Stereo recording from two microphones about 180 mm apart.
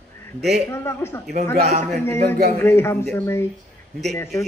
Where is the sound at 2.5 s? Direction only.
15° left (ahead or behind).